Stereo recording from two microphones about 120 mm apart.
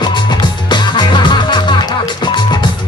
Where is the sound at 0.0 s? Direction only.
35° left (ahead or behind).